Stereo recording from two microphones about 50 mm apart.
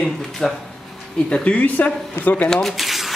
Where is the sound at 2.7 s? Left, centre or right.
Centre.